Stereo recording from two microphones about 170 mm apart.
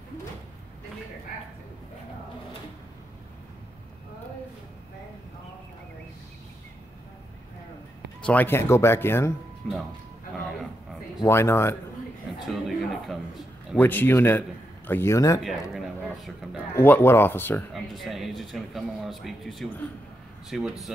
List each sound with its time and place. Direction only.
8.2 s speech: 10° left (ahead or behind)
11.1 s speech: 15° left (ahead or behind)
12.4 s speech: centre (ahead or behind)
13.7 s speech: 10° left (ahead or behind)
15.4 s speech: centre (ahead or behind)
16.7 s speech: 10° left (ahead or behind)
17.7 s speech: centre (ahead or behind)